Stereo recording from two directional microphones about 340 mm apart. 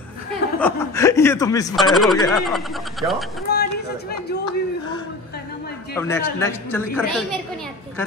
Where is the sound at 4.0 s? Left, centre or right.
Left.